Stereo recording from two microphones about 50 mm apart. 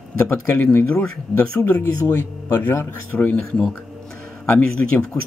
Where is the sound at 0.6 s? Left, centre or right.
Left.